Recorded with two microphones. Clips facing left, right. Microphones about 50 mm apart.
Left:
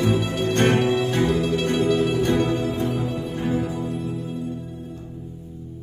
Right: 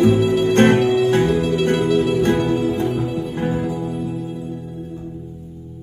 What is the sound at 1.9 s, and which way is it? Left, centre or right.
Music, centre.